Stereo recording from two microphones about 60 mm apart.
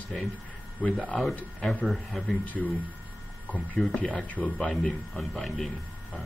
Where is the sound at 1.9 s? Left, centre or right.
Centre.